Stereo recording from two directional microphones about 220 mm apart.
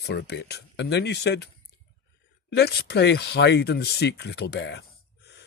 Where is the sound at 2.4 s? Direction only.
50° left (ahead or behind).